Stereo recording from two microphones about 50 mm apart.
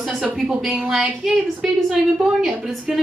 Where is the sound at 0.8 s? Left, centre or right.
Centre.